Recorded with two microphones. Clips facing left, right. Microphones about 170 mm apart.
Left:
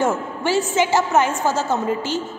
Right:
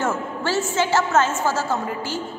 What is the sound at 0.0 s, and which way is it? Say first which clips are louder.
A woman's voice: left 3 dB; 15° left (ahead or behind).